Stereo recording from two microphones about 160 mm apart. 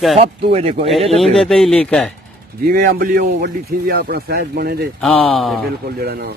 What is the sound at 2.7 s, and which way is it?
A man's voice, 65° right (ahead or behind).